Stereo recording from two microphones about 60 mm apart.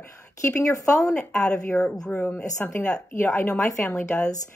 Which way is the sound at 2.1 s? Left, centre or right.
Left.